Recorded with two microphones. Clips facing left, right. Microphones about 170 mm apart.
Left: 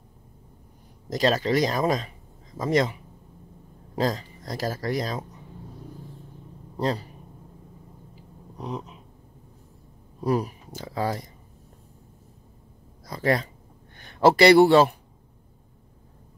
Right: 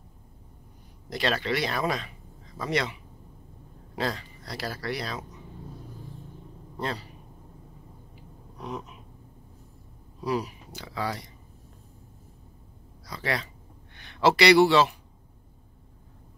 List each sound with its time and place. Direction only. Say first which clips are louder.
1.1 s speech: left 6 dB; 40° left (ahead or behind)
6.8 s speech: left 6 dB; 35° left (ahead or behind)
8.5 s a sound: left 3 dB; 30° left (ahead or behind)
10.2 s speech: left 4 dB; 50° left (ahead or behind)
13.0 s speech: left 7 dB; 45° left (ahead or behind)